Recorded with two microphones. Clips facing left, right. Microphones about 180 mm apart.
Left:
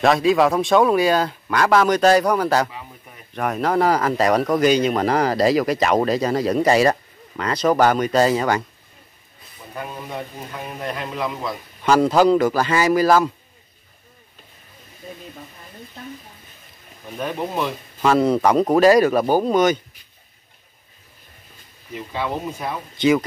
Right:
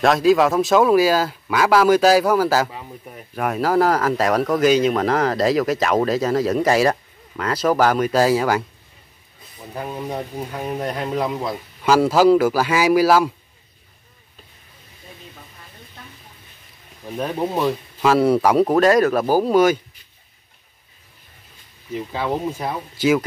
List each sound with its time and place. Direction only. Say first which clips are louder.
0.0 s speech: right 1 dB; centre (ahead or behind)
10.8 s speech: right 2 dB; 35° right (ahead or behind)
11.8 s speech: right 1 dB; 5° right (ahead or behind)
17.6 s speech: right 3 dB; 5° right (ahead or behind)
22.2 s speech: right 2 dB; 25° right (ahead or behind)
22.9 s speech: left 1 dB; 5° right (ahead or behind)